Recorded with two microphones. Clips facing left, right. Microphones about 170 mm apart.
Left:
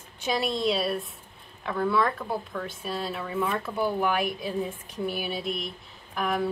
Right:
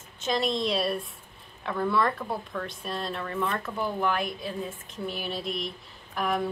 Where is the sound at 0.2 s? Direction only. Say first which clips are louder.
Even; 10° left (ahead or behind).